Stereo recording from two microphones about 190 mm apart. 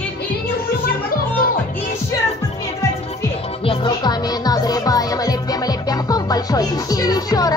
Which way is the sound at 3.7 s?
20° left (ahead or behind).